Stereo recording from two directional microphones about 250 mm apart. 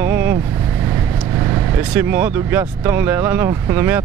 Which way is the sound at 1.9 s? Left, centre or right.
Centre.